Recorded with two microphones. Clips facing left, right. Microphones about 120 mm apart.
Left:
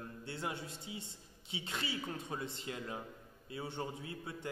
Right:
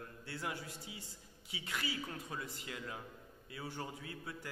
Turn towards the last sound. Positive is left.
turn(degrees=25)  # may be behind; listen again after turning